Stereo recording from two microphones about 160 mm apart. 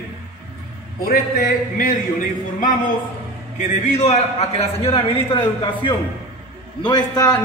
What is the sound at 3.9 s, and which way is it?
A man's voice, 45° left (ahead or behind).